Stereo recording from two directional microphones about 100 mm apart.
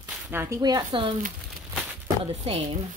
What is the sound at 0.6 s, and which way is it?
Speech, 40° right (ahead or behind).